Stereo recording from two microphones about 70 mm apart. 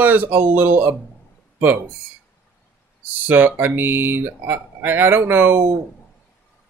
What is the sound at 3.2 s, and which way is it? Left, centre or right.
Speech, right.